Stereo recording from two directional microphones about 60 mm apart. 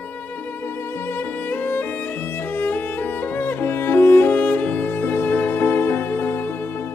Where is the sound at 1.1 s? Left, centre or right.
Left.